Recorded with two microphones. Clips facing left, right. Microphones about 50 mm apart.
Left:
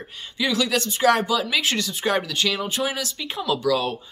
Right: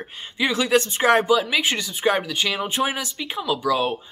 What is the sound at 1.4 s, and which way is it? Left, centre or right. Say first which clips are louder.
Speech: right 1 dB; centre.